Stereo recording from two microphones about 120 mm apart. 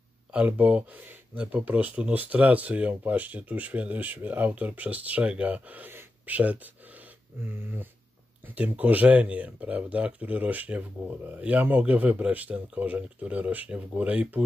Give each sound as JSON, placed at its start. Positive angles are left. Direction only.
{"t": 0.3, "sound": "speech", "side_deg": -10}